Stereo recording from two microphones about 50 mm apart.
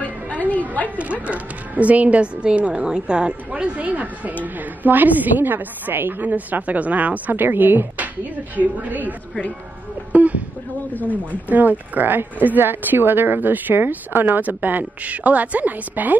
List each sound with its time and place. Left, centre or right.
0.0 s music: left
0.8 s a woman's voice: right
10.1 s speech: right
10.9 s speech: left
11.4 s a woman's voice: right